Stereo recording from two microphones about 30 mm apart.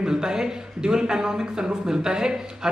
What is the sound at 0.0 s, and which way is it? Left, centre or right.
Speech, right.